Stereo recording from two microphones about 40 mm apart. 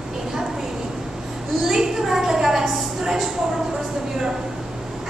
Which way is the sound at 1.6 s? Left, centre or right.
Centre.